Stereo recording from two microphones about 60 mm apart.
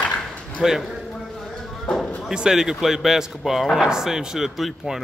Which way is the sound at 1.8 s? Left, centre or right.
Centre.